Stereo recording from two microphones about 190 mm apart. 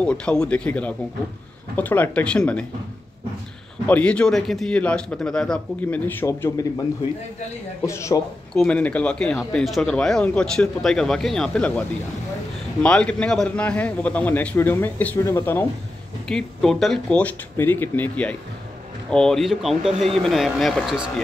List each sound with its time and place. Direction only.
0.0 s a man's voice: 5° left (ahead or behind)
3.8 s speech: 5° left (ahead or behind)
7.8 s a man's voice: 15° left (ahead or behind)
12.8 s a man's voice: 5° left (ahead or behind)